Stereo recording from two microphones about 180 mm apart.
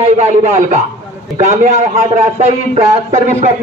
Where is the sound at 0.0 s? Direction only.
40° right (ahead or behind).